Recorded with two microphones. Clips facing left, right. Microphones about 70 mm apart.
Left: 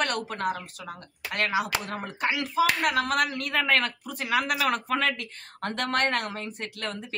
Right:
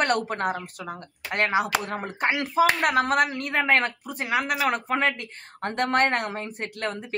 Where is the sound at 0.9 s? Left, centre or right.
Right.